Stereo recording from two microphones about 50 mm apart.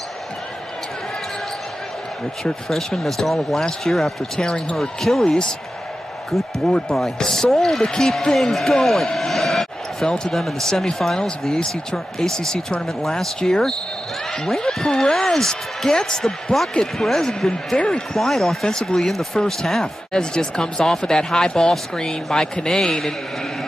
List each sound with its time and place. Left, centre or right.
2.7 s speech: centre
5.2 s speech: centre
6.3 s speech: centre
10.0 s speech: centre
18.1 s speech: centre